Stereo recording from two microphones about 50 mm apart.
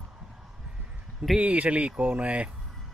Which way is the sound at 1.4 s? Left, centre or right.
Right.